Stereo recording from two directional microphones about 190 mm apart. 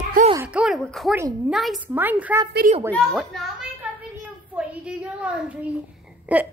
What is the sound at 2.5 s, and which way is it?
Speech, 50° right (ahead or behind).